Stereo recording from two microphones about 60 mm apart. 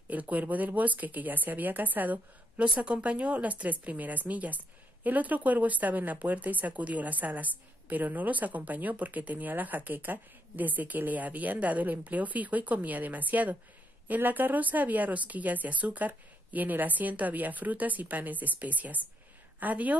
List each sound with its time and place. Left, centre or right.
0.1 s speech: right